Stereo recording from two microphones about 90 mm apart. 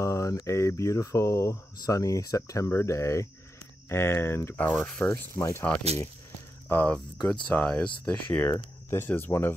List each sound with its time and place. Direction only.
0.0 s speech: 35° left (ahead or behind)
4.7 s speech: 5° left (ahead or behind)
5.3 s speech: 30° left (ahead or behind)
6.7 s speech: 15° left (ahead or behind)